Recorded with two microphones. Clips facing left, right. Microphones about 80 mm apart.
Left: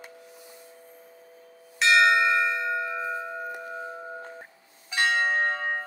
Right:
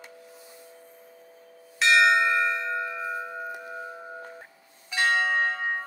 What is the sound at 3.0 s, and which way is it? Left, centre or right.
Tubular bells, centre.